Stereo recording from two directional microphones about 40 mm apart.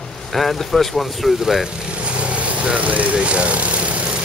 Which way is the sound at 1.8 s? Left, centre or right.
Right.